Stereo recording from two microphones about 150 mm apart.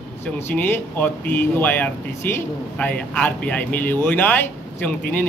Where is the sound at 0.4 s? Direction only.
15° left (ahead or behind).